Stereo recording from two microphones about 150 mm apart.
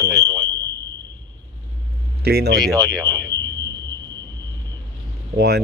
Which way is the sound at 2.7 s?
25° right (ahead or behind).